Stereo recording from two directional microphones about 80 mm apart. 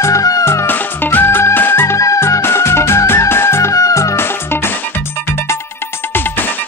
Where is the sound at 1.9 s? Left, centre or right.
Left.